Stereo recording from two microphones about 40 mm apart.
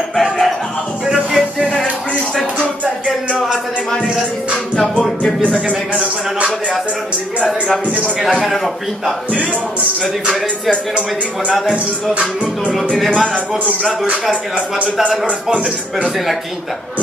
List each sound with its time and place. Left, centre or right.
0.1 s music: centre
1.0 s music: centre
1.6 s a sound: centre
5.7 s speech: right
11.7 s speech: right